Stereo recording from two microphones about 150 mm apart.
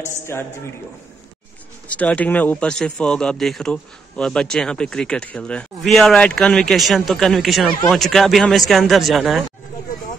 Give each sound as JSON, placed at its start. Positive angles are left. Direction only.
{"t": 0.0, "sound": "a man's voice", "side_deg": 15}
{"t": 2.0, "sound": "speech", "side_deg": 10}